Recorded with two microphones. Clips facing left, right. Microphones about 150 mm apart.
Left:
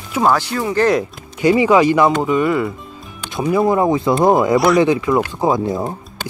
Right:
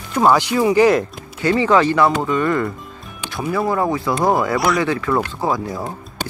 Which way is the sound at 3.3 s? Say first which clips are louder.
Left 5 dB; 20° left (ahead or behind).